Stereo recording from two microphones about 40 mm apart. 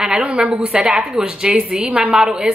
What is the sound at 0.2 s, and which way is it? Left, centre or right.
Speech, right.